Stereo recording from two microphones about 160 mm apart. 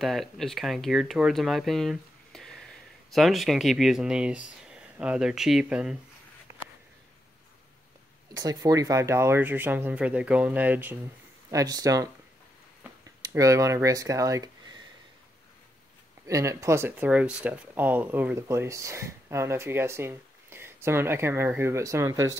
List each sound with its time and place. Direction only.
0.0 s speech: centre (ahead or behind)
8.3 s speech: 20° right (ahead or behind)
11.5 s speech: 20° right (ahead or behind)
13.2 s speech: 20° right (ahead or behind)
16.3 s speech: 20° right (ahead or behind)